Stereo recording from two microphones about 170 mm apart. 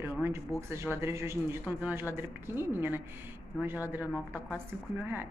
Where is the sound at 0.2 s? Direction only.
15° right (ahead or behind).